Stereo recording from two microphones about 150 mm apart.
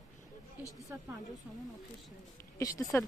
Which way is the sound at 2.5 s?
20° left (ahead or behind).